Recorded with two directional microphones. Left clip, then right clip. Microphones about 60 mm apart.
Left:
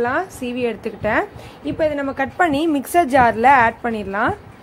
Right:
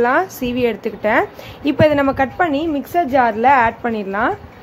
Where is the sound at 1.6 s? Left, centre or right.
Right.